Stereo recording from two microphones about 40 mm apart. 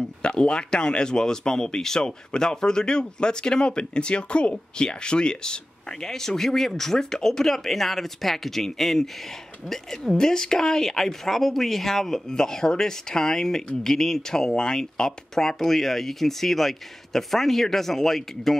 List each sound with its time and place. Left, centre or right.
0.2 s speech: left